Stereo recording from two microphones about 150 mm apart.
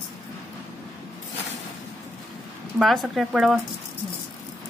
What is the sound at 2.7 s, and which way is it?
Speech, centre (ahead or behind).